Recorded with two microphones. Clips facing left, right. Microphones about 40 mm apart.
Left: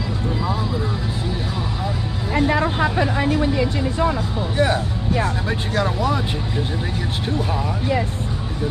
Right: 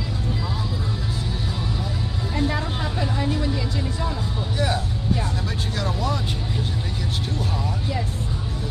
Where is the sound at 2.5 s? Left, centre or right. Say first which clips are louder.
Left 8 dB; left.